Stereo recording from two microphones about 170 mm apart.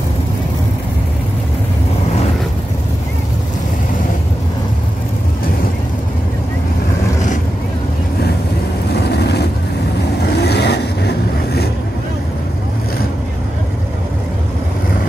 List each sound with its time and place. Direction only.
10.3 s vehicle: 75° left (ahead or behind)